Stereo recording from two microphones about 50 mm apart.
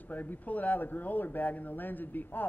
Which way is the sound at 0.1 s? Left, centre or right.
Left.